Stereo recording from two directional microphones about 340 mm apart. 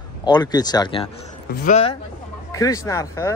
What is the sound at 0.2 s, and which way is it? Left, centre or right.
Speech, centre.